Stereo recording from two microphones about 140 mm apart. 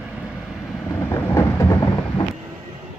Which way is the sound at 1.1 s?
20° left (ahead or behind).